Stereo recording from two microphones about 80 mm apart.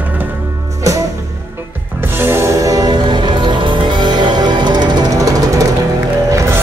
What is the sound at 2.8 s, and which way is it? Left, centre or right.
Music, right.